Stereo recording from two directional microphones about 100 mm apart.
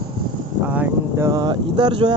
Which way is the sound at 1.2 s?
40° right (ahead or behind).